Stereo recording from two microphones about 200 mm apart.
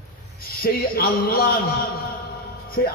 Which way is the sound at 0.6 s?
50° left (ahead or behind).